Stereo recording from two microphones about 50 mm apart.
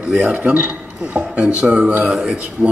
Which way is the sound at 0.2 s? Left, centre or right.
Right.